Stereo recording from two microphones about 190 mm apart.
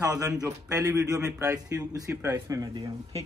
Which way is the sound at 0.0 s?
20° right (ahead or behind).